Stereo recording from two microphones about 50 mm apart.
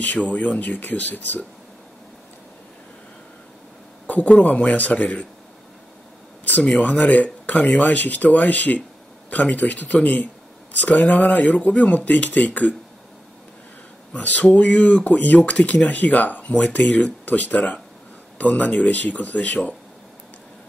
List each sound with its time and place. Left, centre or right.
0.0 s speech: left
4.1 s speech: left
6.4 s speech: left
14.1 s speech: left